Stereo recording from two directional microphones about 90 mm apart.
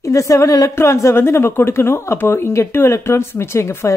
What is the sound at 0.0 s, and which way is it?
Speech, 35° left (ahead or behind).